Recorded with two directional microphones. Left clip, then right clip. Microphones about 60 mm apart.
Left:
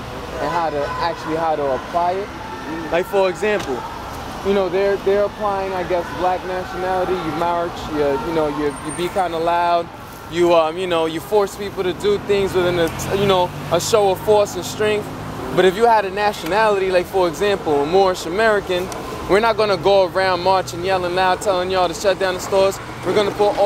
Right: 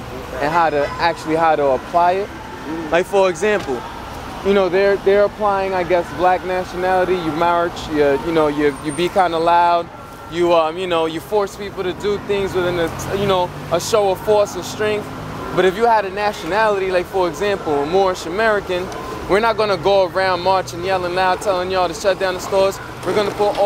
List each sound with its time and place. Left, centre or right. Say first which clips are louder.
0.4 s speech: right 4 dB; right
2.9 s speech: right 2 dB; right
4.5 s speech: right 3 dB; right
10.3 s speech: even; centre